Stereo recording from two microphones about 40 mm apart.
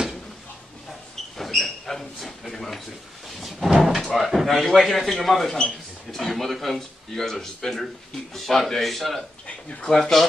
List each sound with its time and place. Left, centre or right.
1.3 s a sound: centre
3.3 s speech: centre
9.5 s speech: left
9.8 s speech: centre